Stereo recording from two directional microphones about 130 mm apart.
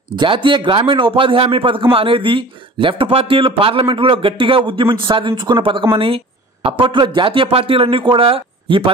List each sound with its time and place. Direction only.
0.1 s speech: 40° right (ahead or behind)